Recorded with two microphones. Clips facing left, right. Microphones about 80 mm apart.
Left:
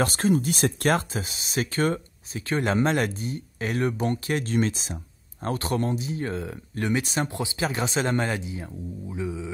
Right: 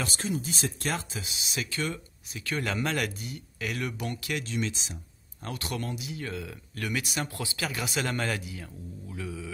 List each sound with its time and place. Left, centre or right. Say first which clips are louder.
0.0 s speech: left 9 dB; left
5.4 s speech: left 8 dB; left